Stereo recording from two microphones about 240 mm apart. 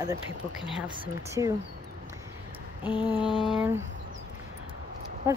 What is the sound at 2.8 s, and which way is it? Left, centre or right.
Mantra, centre.